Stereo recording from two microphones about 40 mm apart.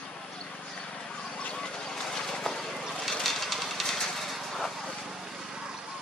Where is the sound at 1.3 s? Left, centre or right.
Left.